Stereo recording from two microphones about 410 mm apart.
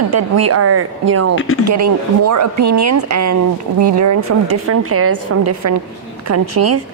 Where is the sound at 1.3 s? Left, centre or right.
Left.